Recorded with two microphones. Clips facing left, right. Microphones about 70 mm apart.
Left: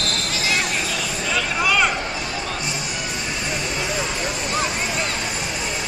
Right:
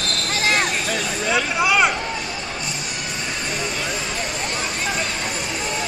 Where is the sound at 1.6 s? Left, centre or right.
Centre.